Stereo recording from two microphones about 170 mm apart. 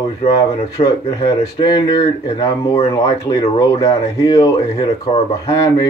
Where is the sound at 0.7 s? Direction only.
20° left (ahead or behind).